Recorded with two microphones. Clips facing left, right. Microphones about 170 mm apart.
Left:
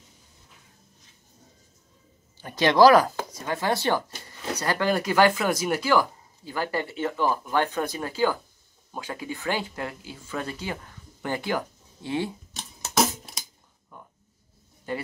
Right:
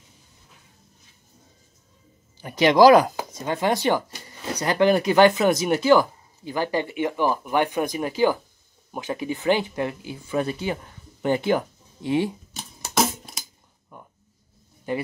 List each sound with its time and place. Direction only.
2.3 s chopping: 15° right (ahead or behind)
8.9 s speech: 20° right (ahead or behind)
12.5 s music: centre (ahead or behind)
13.9 s a sound: 15° right (ahead or behind)
14.9 s a man's voice: 15° right (ahead or behind)